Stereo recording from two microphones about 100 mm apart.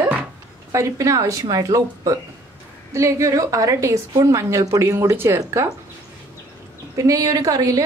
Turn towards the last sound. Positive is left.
turn(degrees=-35)  # may be behind; listen again after turning